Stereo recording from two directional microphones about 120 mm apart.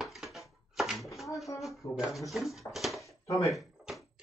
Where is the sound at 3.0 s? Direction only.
25° left (ahead or behind).